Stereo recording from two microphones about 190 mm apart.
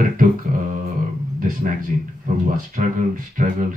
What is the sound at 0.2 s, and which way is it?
Beatboxing, 45° right (ahead or behind).